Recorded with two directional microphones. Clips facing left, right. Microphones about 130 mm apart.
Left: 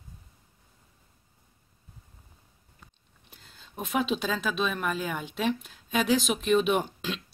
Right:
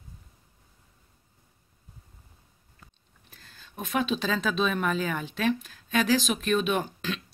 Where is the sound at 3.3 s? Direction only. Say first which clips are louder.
Left 1 dB; 20° left (ahead or behind).